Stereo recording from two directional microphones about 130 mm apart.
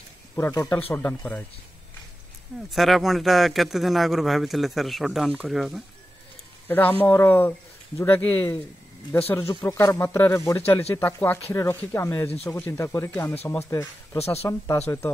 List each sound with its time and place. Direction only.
0.5 s speech: 30° left (ahead or behind)
0.8 s speech: 15° left (ahead or behind)
2.7 s speech: centre (ahead or behind)
6.7 s speech: 15° left (ahead or behind)